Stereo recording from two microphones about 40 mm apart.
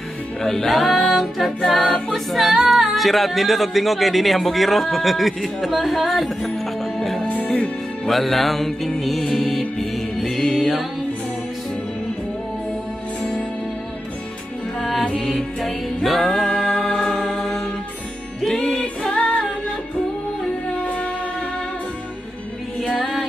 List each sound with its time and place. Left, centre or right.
0.4 s speech: centre
8.1 s music: centre
14.8 s music: centre
18.6 s music: centre
19.1 s music: left
22.8 s music: centre